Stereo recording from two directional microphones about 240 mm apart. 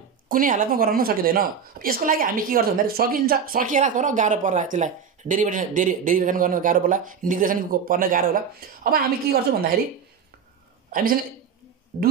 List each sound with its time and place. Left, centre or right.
0.3 s a woman's voice: right
11.9 s a woman's voice: right